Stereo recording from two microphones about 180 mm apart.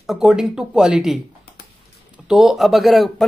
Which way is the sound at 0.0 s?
Centre (ahead or behind).